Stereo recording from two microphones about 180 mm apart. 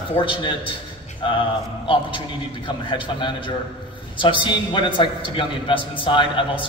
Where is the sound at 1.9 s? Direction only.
30° left (ahead or behind).